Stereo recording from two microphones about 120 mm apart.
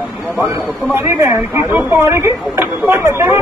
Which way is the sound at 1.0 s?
20° right (ahead or behind).